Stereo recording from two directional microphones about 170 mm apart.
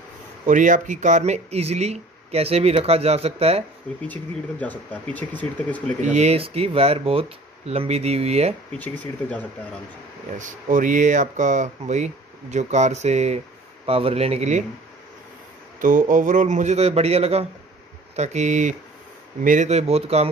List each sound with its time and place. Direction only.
0.5 s speech: 50° right (ahead or behind)
4.1 s speech: 10° left (ahead or behind)
6.0 s speech: 40° right (ahead or behind)
8.7 s speech: 10° left (ahead or behind)
10.3 s speech: 50° right (ahead or behind)
15.8 s speech: 50° right (ahead or behind)